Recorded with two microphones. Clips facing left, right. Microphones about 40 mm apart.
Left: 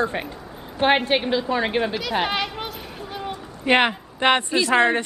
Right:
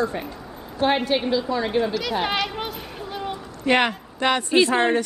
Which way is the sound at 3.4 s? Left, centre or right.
Left.